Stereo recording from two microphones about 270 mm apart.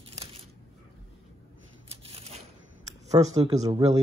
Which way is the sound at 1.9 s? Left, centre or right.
Right.